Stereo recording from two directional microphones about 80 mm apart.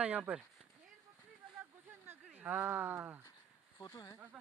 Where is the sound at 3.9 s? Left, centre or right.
Left.